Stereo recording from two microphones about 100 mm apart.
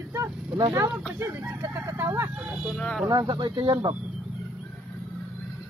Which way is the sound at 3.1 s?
40° right (ahead or behind).